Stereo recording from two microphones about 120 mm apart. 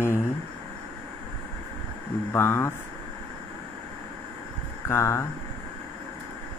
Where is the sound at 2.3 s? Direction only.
20° left (ahead or behind).